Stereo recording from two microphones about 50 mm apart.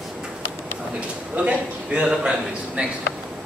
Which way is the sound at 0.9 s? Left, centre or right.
Right.